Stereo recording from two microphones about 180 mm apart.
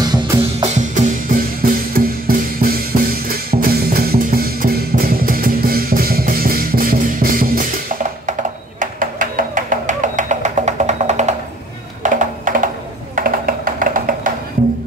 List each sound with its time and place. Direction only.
0.0 s music: 20° right (ahead or behind)
0.6 s music: 40° right (ahead or behind)